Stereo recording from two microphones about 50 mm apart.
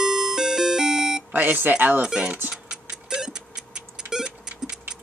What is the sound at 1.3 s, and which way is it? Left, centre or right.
Speech, right.